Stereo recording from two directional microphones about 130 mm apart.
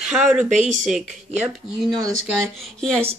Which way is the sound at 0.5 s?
65° right (ahead or behind).